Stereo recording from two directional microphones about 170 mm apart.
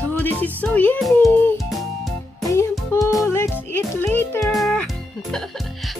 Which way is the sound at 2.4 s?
20° left (ahead or behind).